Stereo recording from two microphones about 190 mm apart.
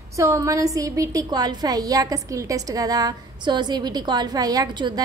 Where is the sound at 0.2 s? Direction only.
15° right (ahead or behind).